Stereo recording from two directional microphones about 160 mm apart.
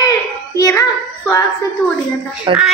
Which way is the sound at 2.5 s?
30° right (ahead or behind).